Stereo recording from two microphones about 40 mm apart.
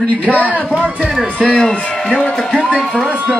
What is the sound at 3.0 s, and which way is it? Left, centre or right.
Speech, right.